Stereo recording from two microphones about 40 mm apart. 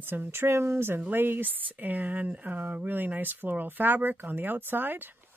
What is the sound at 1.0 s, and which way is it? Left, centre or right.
Speech, right.